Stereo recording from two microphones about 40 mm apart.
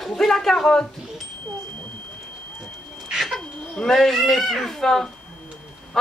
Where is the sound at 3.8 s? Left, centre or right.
Centre.